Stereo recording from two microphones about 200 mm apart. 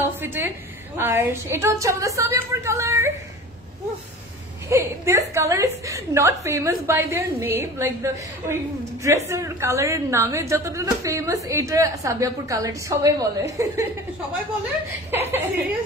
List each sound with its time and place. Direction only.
0.2 s a woman's voice: 10° right (ahead or behind)
4.6 s a woman's voice: 15° right (ahead or behind)
15.0 s a woman's voice: 10° right (ahead or behind)